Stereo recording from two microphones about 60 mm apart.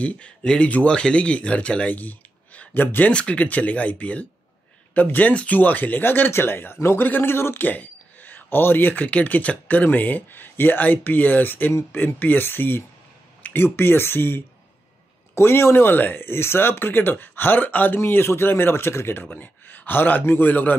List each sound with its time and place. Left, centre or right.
0.0 s speech: centre
2.0 s a sound: left
3.1 s speech: centre; by 7.6 s left
7.6 s speech: left
13.4 s a sound: left
13.7 s speech: left